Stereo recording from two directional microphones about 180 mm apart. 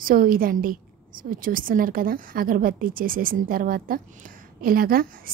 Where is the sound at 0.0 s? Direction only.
50° right (ahead or behind).